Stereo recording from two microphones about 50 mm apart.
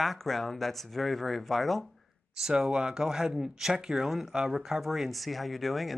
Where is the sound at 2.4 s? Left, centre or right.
Centre.